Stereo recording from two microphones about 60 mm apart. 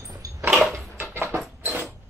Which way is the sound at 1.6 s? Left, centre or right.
Right.